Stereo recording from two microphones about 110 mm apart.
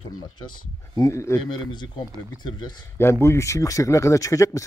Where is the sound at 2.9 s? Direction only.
25° left (ahead or behind).